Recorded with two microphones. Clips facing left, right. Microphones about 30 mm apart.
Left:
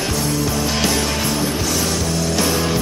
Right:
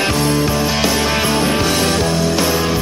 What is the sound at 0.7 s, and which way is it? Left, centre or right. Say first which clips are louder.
Music: right 3 dB; centre.